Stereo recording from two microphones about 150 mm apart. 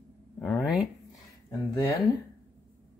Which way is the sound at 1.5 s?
30° left (ahead or behind).